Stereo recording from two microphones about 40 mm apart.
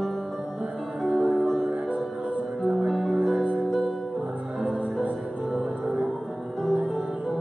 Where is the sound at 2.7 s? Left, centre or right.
Centre.